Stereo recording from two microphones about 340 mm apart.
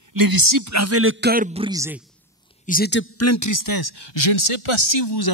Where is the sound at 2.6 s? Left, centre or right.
Left.